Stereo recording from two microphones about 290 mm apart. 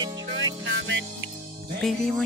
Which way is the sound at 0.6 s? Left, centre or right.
Right.